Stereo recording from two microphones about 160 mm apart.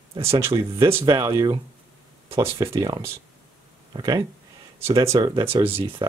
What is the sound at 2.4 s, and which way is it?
Speech, 20° right (ahead or behind).